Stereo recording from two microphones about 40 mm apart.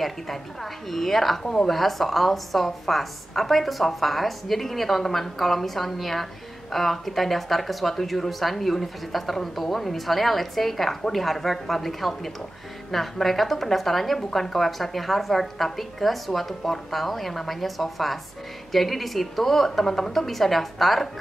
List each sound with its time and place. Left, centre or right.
0.8 s speech: centre
1.4 s speech: centre
1.7 s speech: centre